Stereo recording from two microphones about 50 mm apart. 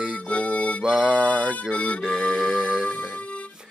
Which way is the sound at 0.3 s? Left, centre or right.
Left.